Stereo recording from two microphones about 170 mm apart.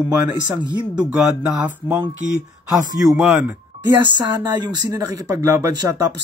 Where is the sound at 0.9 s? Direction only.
5° right (ahead or behind).